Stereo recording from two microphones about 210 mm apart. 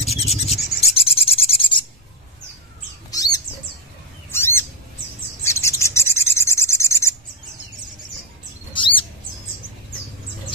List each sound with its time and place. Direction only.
0.0 s rub: 30° left (ahead or behind)
4.3 s bird: 10° left (ahead or behind)
5.4 s rub: 15° left (ahead or behind)
8.7 s a sound: 25° left (ahead or behind)